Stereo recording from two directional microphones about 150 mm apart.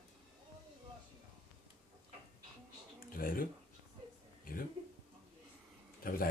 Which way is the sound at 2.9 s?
70° left (ahead or behind).